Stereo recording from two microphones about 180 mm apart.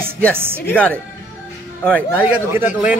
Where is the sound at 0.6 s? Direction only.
5° left (ahead or behind).